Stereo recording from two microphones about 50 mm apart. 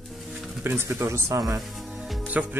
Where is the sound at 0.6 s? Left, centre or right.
Right.